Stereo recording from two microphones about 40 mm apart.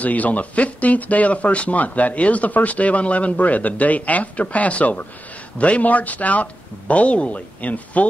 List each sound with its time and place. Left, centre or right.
0.0 s speech: left